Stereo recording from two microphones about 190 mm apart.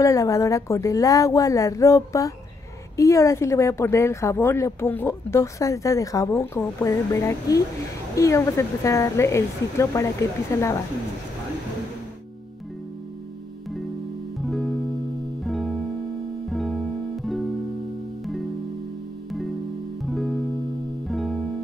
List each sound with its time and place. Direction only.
0.0 s speech: 15° left (ahead or behind)
14.4 s music: centre (ahead or behind)
20.1 s music: centre (ahead or behind)